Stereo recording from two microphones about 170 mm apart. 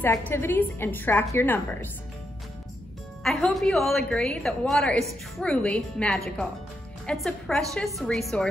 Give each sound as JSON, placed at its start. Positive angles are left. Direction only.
{"t": 0.0, "sound": "a woman's voice", "side_deg": 10}
{"t": 3.3, "sound": "a woman's voice", "side_deg": 0}